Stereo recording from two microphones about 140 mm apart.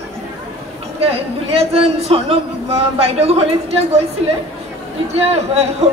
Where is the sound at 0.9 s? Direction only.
45° right (ahead or behind).